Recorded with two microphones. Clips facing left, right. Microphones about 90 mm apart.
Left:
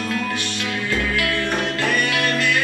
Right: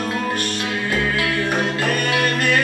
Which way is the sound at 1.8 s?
45° right (ahead or behind).